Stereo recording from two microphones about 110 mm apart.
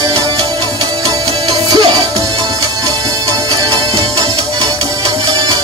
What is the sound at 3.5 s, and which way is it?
Music, 40° right (ahead or behind).